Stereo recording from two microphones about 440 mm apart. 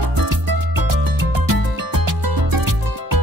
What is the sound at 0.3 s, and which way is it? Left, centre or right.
Music, right.